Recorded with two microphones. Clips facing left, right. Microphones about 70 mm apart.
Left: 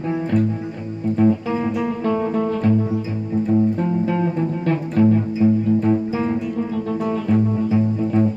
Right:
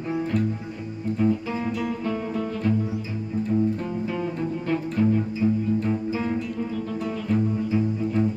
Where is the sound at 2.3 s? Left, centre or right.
Left.